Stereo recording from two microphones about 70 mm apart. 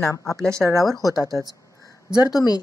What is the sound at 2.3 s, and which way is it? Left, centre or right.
Speech, left.